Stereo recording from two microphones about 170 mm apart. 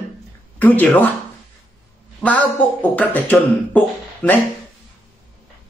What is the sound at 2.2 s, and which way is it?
Speech, 10° left (ahead or behind).